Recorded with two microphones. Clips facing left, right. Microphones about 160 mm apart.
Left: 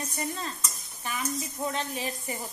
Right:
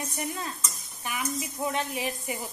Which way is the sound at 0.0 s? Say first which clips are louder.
Even; 15° right (ahead or behind).